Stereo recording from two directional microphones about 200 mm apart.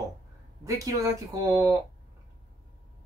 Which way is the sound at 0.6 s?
15° right (ahead or behind).